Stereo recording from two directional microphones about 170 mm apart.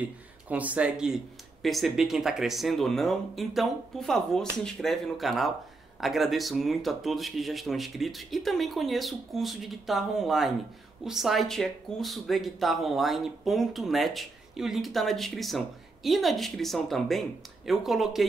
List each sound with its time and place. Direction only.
0.0 s speech: 10° right (ahead or behind)